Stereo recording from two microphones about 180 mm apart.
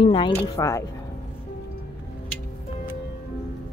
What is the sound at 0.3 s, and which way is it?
Speech, 15° left (ahead or behind).